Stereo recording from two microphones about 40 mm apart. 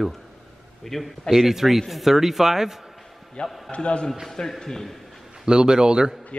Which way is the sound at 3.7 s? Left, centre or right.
Left.